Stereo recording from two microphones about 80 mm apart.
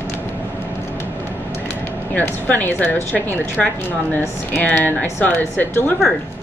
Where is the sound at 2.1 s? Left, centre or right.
Left.